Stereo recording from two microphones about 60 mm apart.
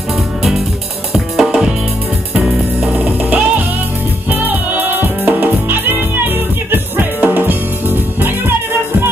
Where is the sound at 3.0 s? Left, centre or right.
Right.